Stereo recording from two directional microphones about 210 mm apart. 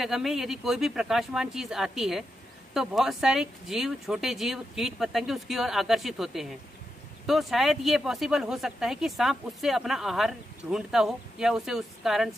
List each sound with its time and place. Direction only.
0.0 s speech: centre (ahead or behind)